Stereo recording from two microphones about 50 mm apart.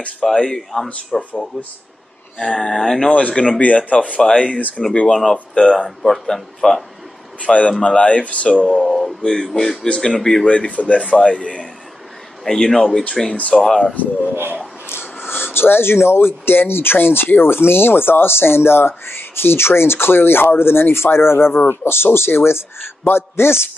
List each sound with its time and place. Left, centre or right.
0.4 s speech: centre
2.5 s speech: centre
3.1 s speech: left
5.0 s speech: centre
7.4 s speech: left
8.6 s speech: centre
9.2 s speech: centre
9.8 s speech: centre
10.4 s speech: left
12.4 s speech: centre
14.3 s speech: right
14.9 s a man's voice: left